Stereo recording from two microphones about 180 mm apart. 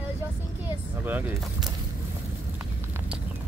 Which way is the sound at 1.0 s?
10° right (ahead or behind).